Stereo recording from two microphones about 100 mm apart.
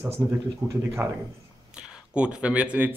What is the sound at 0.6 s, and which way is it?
Speech, 15° right (ahead or behind).